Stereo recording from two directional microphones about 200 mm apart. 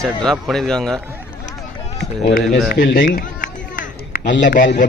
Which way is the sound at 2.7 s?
45° left (ahead or behind).